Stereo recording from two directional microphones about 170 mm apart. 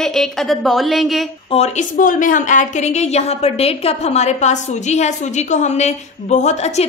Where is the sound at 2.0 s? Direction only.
50° left (ahead or behind).